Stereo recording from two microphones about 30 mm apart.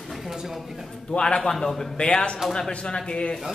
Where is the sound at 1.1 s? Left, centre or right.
Left.